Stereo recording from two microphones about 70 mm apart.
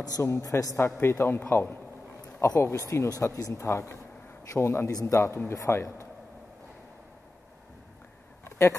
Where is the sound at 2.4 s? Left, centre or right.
Left.